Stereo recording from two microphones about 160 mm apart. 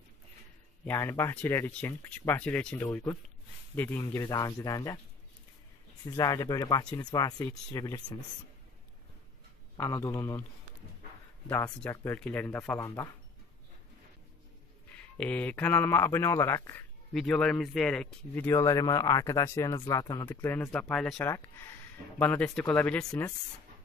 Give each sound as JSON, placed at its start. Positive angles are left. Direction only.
{"t": 0.8, "sound": "a man's voice", "side_deg": 15}
{"t": 6.0, "sound": "speech", "side_deg": 20}
{"t": 9.8, "sound": "speech", "side_deg": 20}
{"t": 11.4, "sound": "a man's voice", "side_deg": 15}
{"t": 14.9, "sound": "a man's voice", "side_deg": 10}
{"t": 17.1, "sound": "a man's voice", "side_deg": 5}
{"t": 20.4, "sound": "a man's voice", "side_deg": 10}
{"t": 21.3, "sound": "a man's voice", "side_deg": 15}